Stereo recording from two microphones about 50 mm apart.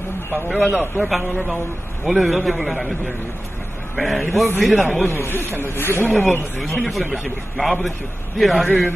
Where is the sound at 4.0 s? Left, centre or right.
Centre.